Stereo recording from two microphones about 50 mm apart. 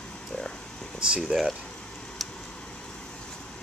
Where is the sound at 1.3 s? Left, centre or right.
Centre.